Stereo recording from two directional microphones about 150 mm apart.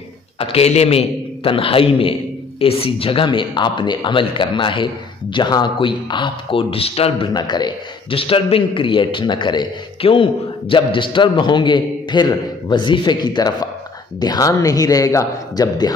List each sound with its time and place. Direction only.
0.4 s a man's voice: 40° left (ahead or behind)
7.3 s a man's voice: 30° left (ahead or behind)